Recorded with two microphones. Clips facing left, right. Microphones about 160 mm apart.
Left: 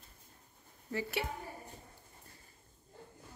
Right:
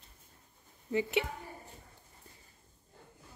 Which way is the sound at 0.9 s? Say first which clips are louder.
Right 6 dB; 20° right (ahead or behind).